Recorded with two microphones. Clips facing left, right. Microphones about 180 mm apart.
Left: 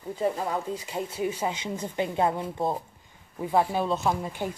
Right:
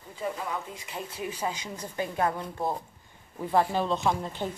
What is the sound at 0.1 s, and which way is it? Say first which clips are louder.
Speech: left 6 dB; 35° left (ahead or behind).